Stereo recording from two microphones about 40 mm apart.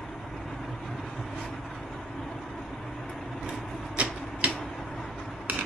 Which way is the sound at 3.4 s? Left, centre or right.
Right.